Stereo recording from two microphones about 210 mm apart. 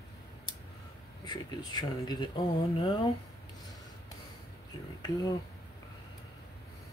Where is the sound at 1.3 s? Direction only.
20° left (ahead or behind).